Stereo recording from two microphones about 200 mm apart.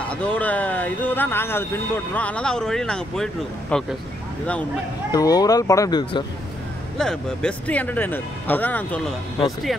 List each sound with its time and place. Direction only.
0.0 s speech: 5° left (ahead or behind)
5.1 s speech: 20° left (ahead or behind)
7.0 s speech: centre (ahead or behind)